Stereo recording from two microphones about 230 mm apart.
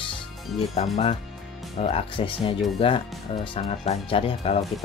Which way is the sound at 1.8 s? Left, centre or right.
Left.